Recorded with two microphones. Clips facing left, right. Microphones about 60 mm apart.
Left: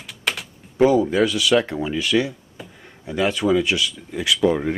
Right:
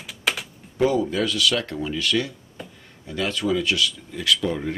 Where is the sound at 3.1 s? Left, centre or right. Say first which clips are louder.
Left 5 dB; centre.